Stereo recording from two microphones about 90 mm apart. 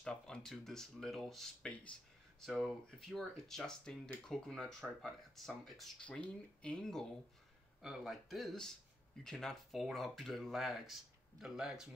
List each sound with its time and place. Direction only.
0.0 s speech: 10° left (ahead or behind)
2.4 s speech: centre (ahead or behind)
5.9 s speech: 15° left (ahead or behind); by 11.9 s 5° right (ahead or behind)